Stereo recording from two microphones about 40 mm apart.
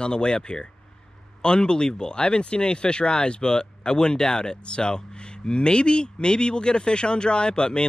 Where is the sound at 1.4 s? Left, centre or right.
Left.